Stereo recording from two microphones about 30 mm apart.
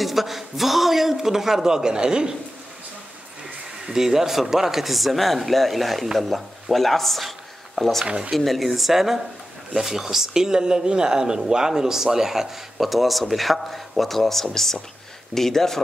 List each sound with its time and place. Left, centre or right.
0.0 s a man's voice: centre; by 2.3 s right
3.8 s a man's voice: centre
12.8 s speech: centre